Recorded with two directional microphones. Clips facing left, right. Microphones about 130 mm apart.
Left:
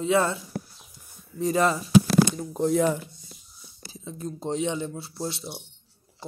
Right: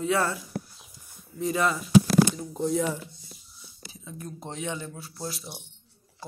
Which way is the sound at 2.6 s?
60° left (ahead or behind).